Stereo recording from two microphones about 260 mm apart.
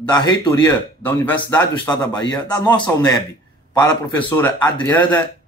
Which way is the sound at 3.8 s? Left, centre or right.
Centre.